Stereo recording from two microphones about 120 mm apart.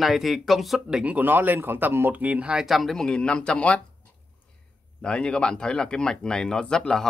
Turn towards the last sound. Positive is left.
turn(degrees=5)  # may be behind; listen again after turning